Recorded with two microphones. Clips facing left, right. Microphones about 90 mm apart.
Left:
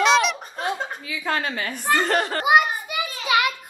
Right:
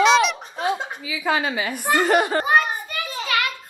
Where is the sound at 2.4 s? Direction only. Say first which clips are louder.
Left 1 dB; 10° left (ahead or behind).